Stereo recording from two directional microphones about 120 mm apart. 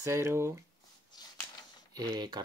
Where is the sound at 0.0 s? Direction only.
20° right (ahead or behind).